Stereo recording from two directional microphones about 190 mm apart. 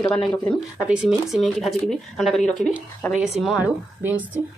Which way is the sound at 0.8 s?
5° right (ahead or behind).